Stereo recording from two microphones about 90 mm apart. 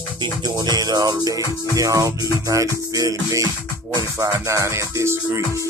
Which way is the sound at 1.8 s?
40° right (ahead or behind).